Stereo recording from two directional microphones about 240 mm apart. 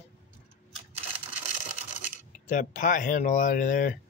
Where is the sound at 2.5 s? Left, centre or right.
Left.